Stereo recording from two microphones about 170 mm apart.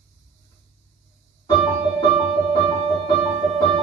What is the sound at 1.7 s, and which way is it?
Music, 10° right (ahead or behind).